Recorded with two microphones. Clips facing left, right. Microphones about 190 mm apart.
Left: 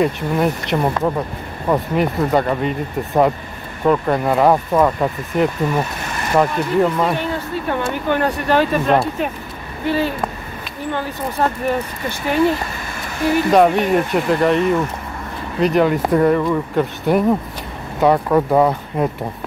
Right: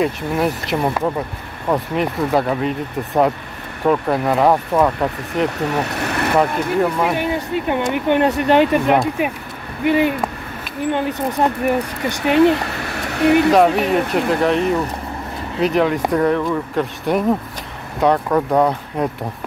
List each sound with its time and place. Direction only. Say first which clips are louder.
0.0 s speech: left 1 dB; centre (ahead or behind)
5.6 s speech: even; 70° right (ahead or behind)
6.3 s speech: left 2 dB; centre (ahead or behind); by 11.5 s 20° right (ahead or behind)
12.4 s speech: right 4 dB; 65° right (ahead or behind)
13.5 s speech: even; centre (ahead or behind)